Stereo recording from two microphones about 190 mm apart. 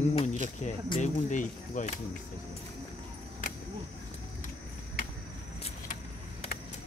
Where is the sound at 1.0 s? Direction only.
40° left (ahead or behind).